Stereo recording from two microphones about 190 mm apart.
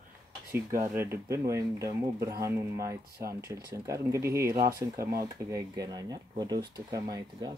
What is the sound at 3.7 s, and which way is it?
Speech, 15° right (ahead or behind).